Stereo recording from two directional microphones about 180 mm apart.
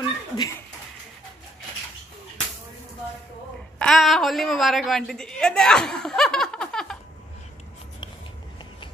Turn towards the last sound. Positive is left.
turn(degrees=5)  # may be behind; listen again after turning